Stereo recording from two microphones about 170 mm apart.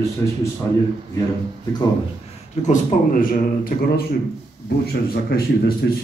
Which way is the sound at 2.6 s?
55° left (ahead or behind).